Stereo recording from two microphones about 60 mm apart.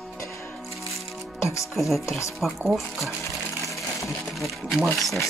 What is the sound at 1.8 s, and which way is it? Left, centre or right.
Speech, centre.